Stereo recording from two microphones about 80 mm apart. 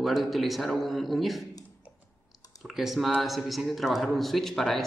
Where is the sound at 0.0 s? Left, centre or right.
Centre.